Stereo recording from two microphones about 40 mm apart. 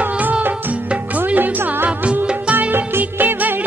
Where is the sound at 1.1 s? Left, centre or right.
Right.